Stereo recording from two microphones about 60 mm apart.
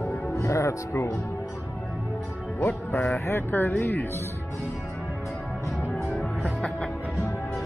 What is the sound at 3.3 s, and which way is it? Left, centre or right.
Speech, left.